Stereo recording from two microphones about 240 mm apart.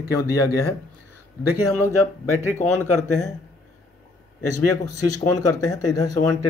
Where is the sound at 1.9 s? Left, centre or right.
Left.